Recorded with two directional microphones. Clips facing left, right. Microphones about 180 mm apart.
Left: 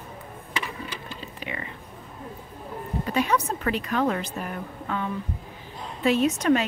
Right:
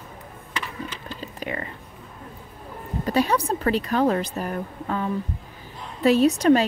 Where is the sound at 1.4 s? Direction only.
45° right (ahead or behind).